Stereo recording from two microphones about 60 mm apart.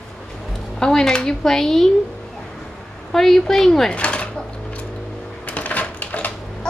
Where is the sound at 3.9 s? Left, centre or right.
Centre.